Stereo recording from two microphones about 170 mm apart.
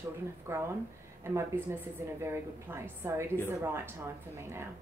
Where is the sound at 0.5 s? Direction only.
15° right (ahead or behind).